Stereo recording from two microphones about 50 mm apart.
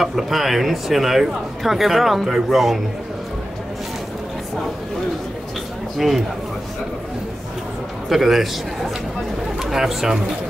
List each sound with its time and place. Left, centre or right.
0.0 s speech: centre
5.9 s speech: centre
8.1 s speech: centre
9.6 s speech: centre